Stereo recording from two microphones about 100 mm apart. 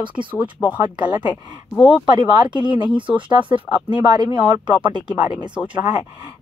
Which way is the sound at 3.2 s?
55° right (ahead or behind).